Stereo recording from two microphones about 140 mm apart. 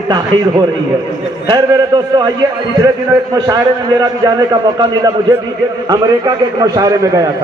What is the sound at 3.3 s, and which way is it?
A man's voice, 25° right (ahead or behind).